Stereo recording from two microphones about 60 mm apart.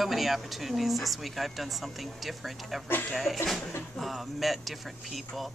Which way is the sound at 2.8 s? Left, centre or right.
Left.